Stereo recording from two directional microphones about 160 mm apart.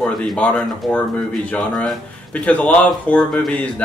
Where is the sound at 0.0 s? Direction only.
Centre (ahead or behind).